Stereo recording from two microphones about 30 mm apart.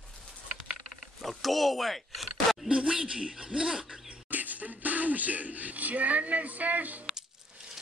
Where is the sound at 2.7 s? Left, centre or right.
Right.